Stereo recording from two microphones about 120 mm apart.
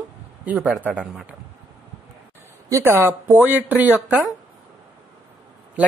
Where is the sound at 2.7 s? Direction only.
20° right (ahead or behind).